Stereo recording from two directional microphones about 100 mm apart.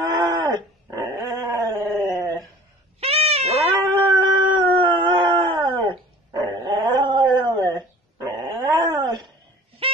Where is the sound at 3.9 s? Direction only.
50° right (ahead or behind).